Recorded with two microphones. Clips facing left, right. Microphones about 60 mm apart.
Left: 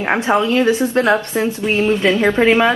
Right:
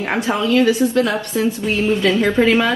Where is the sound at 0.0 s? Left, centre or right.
Left.